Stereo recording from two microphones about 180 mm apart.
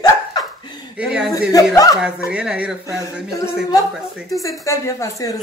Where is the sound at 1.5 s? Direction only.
20° left (ahead or behind).